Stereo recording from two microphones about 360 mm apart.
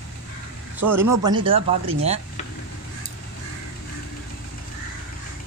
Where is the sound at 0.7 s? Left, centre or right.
Centre.